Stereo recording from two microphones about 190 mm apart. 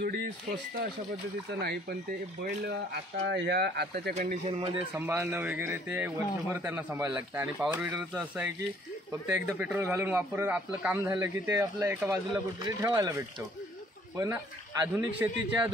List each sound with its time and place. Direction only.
0.0 s speech: 65° right (ahead or behind)
1.6 s speech: 55° right (ahead or behind)
3.3 s speech: 65° right (ahead or behind)
4.1 s speech: 40° right (ahead or behind)
4.6 s speech: 25° right (ahead or behind)
4.9 s a man's voice: 15° right (ahead or behind)
14.1 s a man's voice: 15° right (ahead or behind)